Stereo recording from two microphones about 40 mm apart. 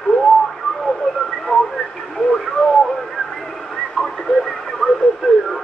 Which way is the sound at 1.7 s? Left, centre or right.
Centre.